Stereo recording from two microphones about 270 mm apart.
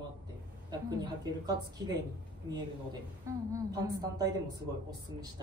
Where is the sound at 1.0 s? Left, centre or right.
Centre.